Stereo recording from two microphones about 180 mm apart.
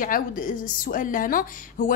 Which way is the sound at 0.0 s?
50° left (ahead or behind).